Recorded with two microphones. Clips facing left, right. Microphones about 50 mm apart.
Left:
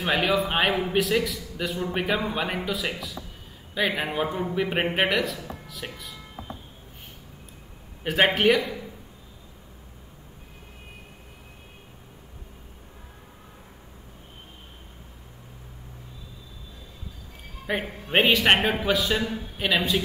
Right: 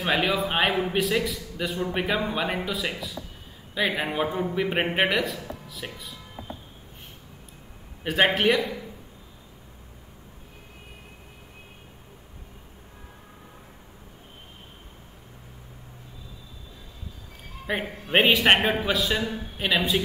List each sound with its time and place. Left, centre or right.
0.0 s a man's voice: centre
8.0 s a man's voice: centre
18.1 s a man's voice: centre